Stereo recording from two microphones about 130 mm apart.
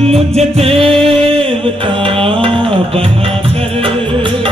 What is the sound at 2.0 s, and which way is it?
Music, 45° right (ahead or behind).